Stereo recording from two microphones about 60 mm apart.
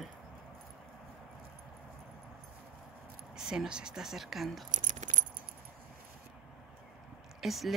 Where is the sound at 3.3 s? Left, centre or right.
Centre.